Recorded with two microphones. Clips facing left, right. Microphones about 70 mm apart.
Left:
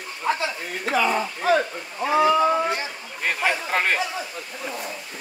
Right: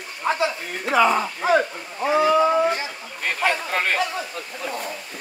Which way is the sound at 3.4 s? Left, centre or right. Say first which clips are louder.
Right 1 dB; centre.